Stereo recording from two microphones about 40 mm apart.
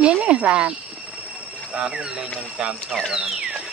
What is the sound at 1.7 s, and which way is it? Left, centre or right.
Speech, right.